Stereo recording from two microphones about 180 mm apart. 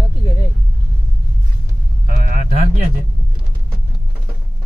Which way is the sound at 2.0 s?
50° right (ahead or behind).